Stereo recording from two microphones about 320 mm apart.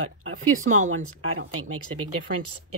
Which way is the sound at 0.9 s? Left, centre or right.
Right.